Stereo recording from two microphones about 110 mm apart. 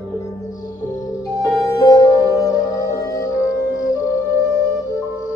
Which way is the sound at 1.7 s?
35° left (ahead or behind).